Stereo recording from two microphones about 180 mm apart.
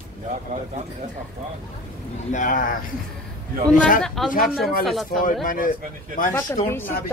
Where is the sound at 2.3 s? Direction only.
45° left (ahead or behind).